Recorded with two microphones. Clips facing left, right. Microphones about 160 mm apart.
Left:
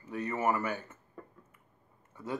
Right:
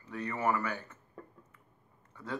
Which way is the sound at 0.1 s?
20° left (ahead or behind).